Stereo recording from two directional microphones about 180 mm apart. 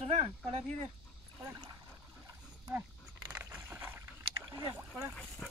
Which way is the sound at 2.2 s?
20° right (ahead or behind).